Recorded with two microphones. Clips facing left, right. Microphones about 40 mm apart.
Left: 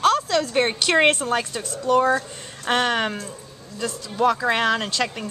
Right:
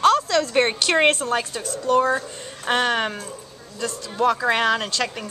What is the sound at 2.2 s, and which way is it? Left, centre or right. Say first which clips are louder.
Speech: even; centre.